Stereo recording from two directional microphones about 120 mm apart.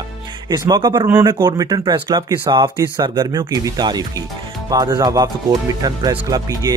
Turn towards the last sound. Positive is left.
turn(degrees=-30)  # may be behind; listen again after turning